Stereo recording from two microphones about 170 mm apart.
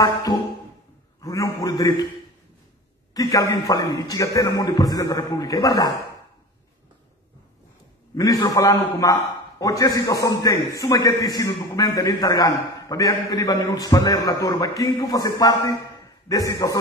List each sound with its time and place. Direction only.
0.0 s a man's voice: 20° left (ahead or behind)
1.2 s a sound: 20° left (ahead or behind)
3.2 s a man's voice: 20° left (ahead or behind)
8.2 s a man's voice: 20° left (ahead or behind)